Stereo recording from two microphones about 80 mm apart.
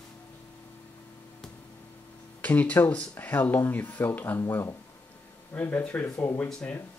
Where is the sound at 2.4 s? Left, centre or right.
Centre.